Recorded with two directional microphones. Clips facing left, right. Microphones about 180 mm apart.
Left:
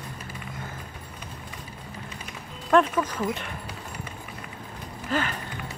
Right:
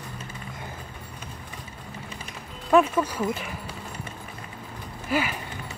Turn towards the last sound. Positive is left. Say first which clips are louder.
# right 1 dB
turn(degrees=-10)  # may be behind; listen again after turning